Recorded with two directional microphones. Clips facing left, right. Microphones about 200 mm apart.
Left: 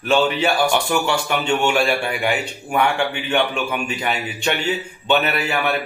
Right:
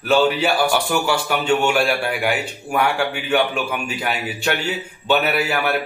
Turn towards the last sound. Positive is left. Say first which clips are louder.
# right 1 dB
turn(degrees=-5)  # may be behind; listen again after turning